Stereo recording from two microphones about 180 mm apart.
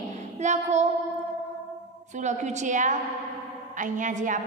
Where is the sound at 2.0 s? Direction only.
40° right (ahead or behind).